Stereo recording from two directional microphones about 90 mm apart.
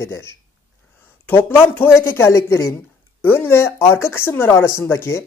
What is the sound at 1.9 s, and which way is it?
Speech, 25° left (ahead or behind).